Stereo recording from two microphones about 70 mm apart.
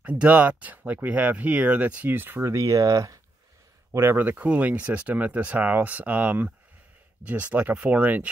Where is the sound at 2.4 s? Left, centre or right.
Right.